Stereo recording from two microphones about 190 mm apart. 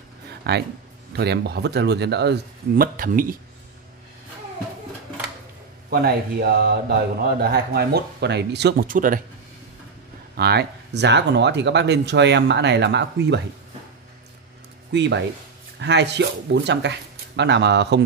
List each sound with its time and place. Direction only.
0.4 s speech: 60° right (ahead or behind)
5.9 s speech: 55° right (ahead or behind)
10.3 s speech: 60° right (ahead or behind)
14.9 s speech: 65° right (ahead or behind)